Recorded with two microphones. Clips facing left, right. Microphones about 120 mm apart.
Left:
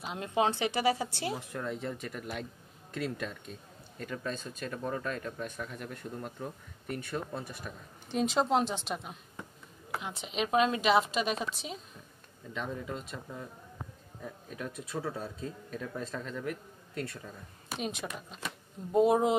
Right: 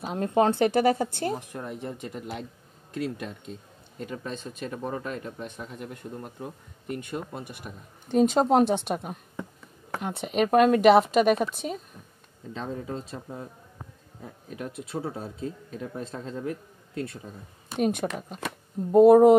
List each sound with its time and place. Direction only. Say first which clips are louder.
0.0 s a woman's voice: right 7 dB; 45° right (ahead or behind)
1.5 s speech: right 1 dB; 20° right (ahead or behind)
4.0 s speech: right 2 dB; 30° right (ahead or behind)
7.0 s speech: even; 15° right (ahead or behind)
7.7 s speech: right 2 dB; 35° right (ahead or behind)
8.1 s a woman's voice: right 7 dB; 50° right (ahead or behind)
12.7 s speech: right 5 dB; 35° right (ahead or behind)
17.7 s a woman's voice: right 11 dB; 55° right (ahead or behind)